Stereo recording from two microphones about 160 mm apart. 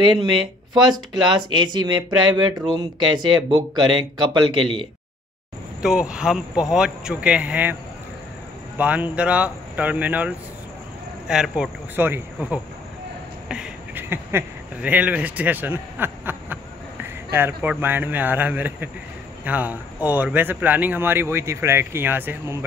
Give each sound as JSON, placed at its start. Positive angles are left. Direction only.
{"t": 0.0, "sound": "speech", "side_deg": -30}
{"t": 1.3, "sound": "speech", "side_deg": -30}
{"t": 5.8, "sound": "speech", "side_deg": -5}
{"t": 8.7, "sound": "speech", "side_deg": -10}